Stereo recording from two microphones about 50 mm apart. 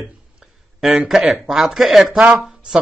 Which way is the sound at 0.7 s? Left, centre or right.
Centre.